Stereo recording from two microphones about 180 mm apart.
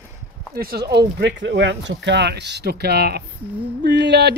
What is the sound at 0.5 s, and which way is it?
Speech, 60° right (ahead or behind).